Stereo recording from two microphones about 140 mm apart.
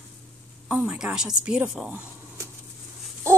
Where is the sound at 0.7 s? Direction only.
5° right (ahead or behind).